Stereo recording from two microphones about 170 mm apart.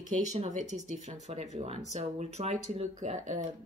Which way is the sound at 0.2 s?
45° right (ahead or behind).